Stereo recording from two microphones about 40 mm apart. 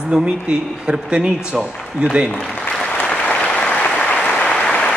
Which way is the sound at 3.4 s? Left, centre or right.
Left.